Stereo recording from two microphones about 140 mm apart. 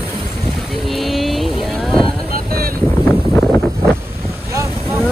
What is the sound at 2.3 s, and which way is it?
Vehicle, 90° right.